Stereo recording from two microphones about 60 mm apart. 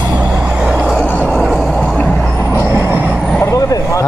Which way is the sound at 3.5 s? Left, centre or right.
Left.